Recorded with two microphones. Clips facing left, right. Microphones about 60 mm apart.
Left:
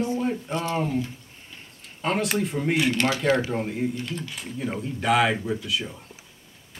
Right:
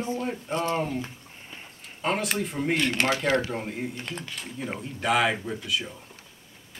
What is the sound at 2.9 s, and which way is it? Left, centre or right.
Speech, right.